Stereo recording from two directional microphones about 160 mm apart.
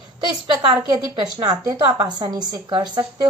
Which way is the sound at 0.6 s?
25° right (ahead or behind).